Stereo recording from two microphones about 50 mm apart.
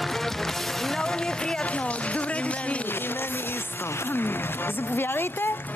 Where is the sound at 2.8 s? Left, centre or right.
Left.